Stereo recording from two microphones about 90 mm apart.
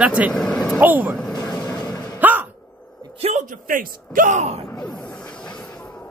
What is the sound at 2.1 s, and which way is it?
Hiccup, 20° right (ahead or behind).